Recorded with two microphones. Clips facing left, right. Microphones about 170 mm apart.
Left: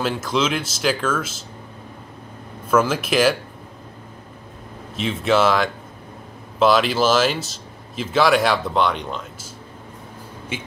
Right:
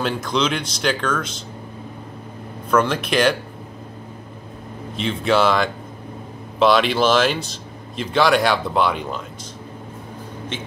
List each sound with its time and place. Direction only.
0.0 s speech: 5° left (ahead or behind)
2.7 s speech: 5° left (ahead or behind)
4.9 s speech: centre (ahead or behind)
10.5 s speech: 10° left (ahead or behind)